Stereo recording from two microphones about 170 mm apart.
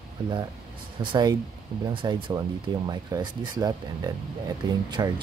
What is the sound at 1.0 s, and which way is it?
Speech, 25° right (ahead or behind).